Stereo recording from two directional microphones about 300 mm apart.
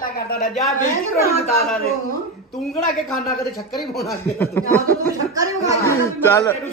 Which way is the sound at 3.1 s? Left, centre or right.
Centre.